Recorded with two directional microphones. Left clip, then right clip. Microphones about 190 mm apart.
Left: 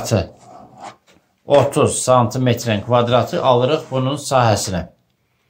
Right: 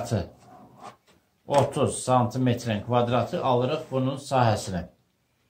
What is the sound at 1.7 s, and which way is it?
Speech, 20° left (ahead or behind).